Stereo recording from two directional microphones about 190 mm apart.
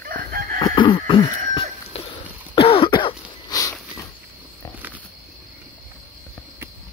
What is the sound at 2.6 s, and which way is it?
Throat clearing, 30° left (ahead or behind).